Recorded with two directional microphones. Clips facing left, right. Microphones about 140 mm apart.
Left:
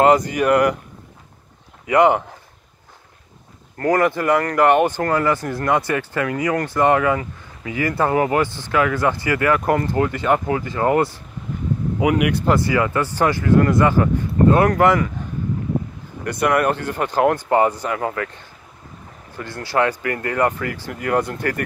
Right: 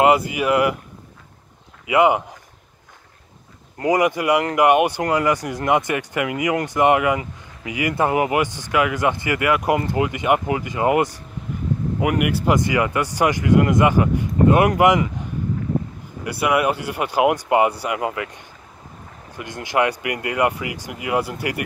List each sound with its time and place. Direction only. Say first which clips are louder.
0.0 s speech: left 2 dB; 10° right (ahead or behind)
1.9 s speech: left 1 dB; 10° right (ahead or behind)
3.7 s speech: left 1 dB; 15° right (ahead or behind)
12.0 s speech: left 3 dB; 5° right (ahead or behind)
12.5 s speech: left 1 dB; 20° right (ahead or behind)
16.3 s speech: left 1 dB; 5° right (ahead or behind)